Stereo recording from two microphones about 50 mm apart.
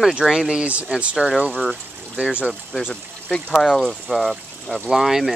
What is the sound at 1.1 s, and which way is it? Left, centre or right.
Speech, centre.